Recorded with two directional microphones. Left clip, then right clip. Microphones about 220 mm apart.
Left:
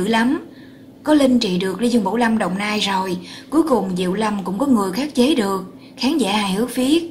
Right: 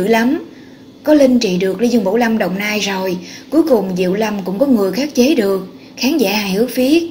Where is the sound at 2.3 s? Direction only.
10° left (ahead or behind).